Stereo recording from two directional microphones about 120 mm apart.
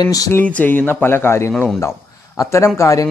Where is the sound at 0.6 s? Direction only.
15° left (ahead or behind).